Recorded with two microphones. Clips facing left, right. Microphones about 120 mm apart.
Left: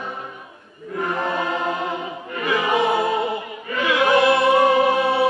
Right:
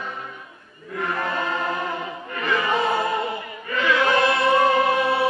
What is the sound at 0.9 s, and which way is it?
Choir, 20° left (ahead or behind).